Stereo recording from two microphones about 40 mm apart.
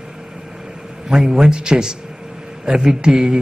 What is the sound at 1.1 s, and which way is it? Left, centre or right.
A man's voice, centre.